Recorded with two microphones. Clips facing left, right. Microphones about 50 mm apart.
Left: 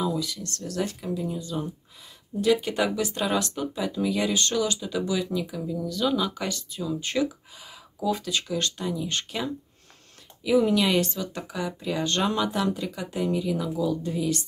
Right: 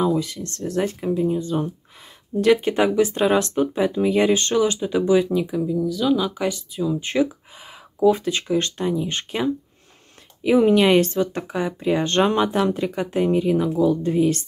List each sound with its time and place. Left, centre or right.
0.0 s speech: right
5.7 s speech: centre; by 9.5 s right
10.4 s speech: right